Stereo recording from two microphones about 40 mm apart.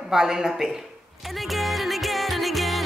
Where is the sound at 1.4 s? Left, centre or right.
Centre.